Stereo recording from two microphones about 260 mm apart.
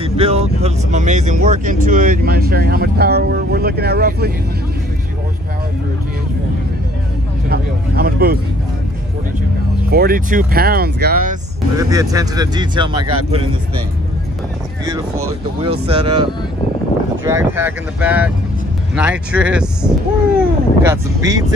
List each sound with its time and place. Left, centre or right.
0.0 s speech: right
7.4 s speech: right
9.8 s speech: right
11.7 s speech: centre
14.9 s speech: centre